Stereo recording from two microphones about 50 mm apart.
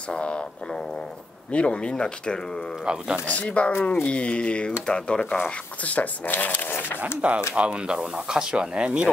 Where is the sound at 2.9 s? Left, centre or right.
Centre.